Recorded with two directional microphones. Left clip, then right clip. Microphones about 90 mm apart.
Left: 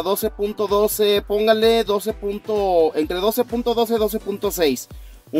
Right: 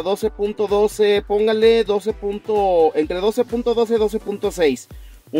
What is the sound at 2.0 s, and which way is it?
Speech, 5° right (ahead or behind).